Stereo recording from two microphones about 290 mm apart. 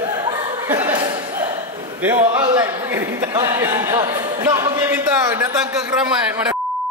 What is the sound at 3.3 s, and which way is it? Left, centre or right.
A man's voice, centre.